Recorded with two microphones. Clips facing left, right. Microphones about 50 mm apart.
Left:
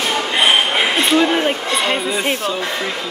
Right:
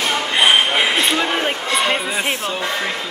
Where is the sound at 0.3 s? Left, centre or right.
Centre.